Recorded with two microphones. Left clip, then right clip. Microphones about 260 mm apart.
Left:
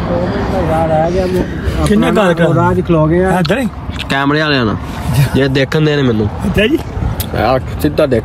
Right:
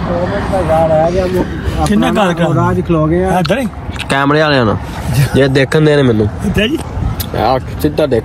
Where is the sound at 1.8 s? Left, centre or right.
Centre.